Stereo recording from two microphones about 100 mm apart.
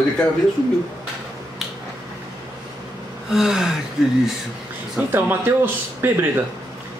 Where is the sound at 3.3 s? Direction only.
5° right (ahead or behind).